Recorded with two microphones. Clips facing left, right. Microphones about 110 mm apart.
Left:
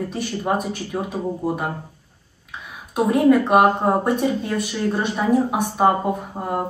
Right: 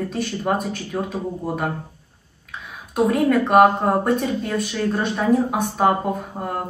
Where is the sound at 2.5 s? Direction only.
10° left (ahead or behind).